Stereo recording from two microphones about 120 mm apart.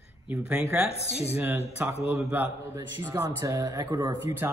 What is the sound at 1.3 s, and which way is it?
A man's voice, 20° right (ahead or behind).